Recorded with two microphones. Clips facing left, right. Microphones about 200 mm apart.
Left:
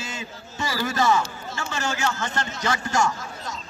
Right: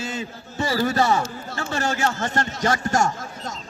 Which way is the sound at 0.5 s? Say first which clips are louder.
Right 5 dB; 35° right (ahead or behind).